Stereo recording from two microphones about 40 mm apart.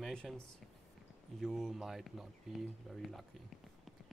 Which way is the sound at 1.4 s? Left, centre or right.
Centre.